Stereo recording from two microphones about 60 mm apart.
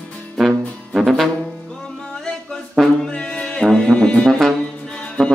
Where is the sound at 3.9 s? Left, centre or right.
Centre.